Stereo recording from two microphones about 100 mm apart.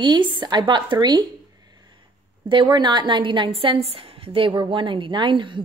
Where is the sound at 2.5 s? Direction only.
50° right (ahead or behind).